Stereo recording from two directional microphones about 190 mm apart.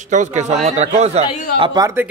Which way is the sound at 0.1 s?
40° right (ahead or behind).